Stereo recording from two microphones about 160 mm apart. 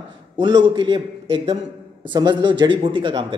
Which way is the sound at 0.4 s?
30° right (ahead or behind).